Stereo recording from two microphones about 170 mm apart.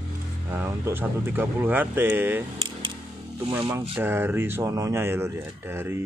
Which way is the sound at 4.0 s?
15° right (ahead or behind).